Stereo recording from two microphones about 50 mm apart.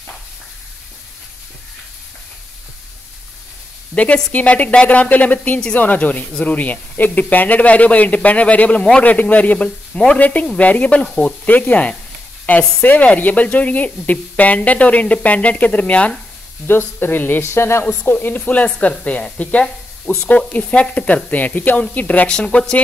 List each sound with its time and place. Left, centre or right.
3.9 s speech: left
16.6 s speech: left
17.5 s speech: left
18.1 s speech: left
19.6 s speech: centre
20.2 s speech: left
22.3 s speech: centre